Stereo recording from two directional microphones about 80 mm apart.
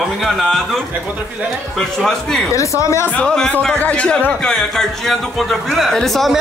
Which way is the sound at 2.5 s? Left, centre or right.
Left.